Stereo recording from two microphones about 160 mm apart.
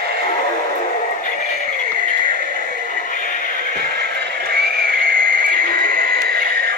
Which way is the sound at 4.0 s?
80° right.